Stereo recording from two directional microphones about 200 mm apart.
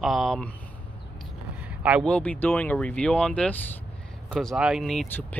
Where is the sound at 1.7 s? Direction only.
5° right (ahead or behind).